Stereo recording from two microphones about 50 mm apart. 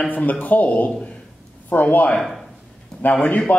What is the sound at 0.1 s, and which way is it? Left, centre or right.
A man's voice, left.